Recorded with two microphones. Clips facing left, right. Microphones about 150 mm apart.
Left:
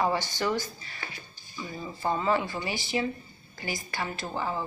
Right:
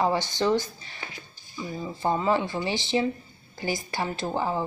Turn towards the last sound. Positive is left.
turn(degrees=-20)  # may be behind; listen again after turning